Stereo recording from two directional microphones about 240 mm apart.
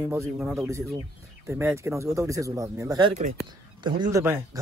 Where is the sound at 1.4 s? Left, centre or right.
Centre.